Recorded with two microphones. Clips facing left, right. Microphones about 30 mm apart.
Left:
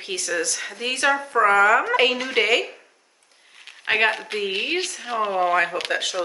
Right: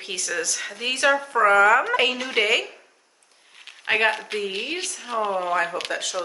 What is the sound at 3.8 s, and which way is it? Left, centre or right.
Speech, centre.